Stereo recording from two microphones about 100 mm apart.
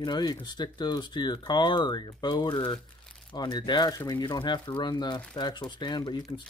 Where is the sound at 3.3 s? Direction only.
45° left (ahead or behind).